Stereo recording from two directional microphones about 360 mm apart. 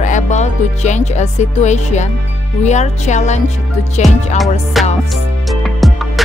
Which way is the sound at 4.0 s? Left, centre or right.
Centre.